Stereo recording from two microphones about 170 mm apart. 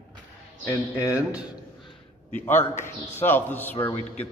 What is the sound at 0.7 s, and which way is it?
Speech, 15° left (ahead or behind).